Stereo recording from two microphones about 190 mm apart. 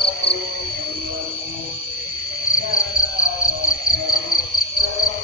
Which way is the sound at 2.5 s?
90° left.